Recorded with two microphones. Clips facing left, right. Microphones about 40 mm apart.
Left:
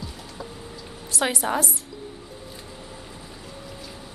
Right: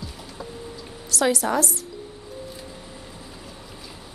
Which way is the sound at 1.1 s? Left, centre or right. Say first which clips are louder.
Right 3 dB; left.